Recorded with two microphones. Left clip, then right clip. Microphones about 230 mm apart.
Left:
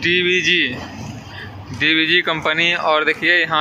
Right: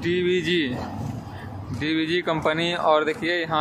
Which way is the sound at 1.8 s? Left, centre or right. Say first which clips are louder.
Left 9 dB; centre.